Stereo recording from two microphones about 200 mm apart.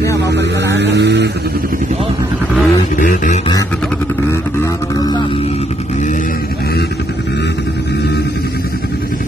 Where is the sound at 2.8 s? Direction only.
40° left (ahead or behind).